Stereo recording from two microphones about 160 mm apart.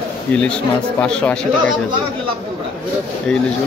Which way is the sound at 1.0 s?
5° left (ahead or behind).